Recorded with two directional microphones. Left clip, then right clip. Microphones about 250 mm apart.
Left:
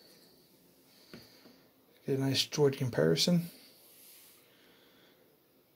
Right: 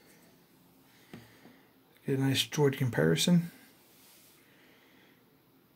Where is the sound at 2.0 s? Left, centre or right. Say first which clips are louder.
Right 1 dB; centre.